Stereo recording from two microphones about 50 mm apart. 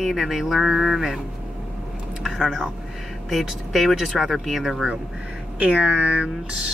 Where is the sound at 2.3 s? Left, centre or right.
Centre.